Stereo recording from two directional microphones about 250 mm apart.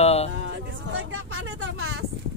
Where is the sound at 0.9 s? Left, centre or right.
Right.